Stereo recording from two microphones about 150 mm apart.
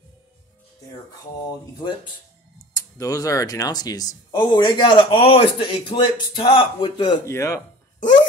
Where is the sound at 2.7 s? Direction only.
25° left (ahead or behind).